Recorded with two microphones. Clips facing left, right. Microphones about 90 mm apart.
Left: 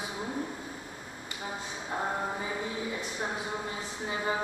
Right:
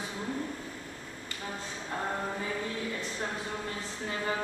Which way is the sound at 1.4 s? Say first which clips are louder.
Left 1 dB; 15° left (ahead or behind).